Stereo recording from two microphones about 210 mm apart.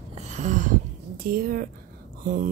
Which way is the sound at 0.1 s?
35° right (ahead or behind).